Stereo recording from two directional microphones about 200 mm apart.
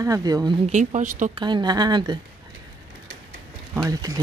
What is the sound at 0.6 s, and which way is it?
Speech, 35° right (ahead or behind).